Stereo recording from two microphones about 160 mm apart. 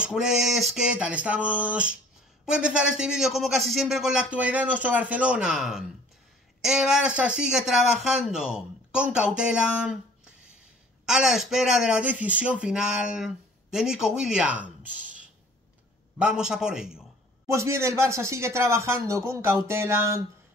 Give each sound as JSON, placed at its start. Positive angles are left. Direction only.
{"t": 0.0, "sound": "speech", "side_deg": -5}
{"t": 16.2, "sound": "speech", "side_deg": -5}
{"t": 17.5, "sound": "speech", "side_deg": -15}